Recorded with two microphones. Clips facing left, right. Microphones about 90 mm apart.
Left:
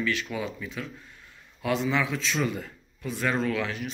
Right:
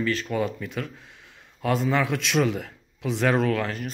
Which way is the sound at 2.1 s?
70° right (ahead or behind).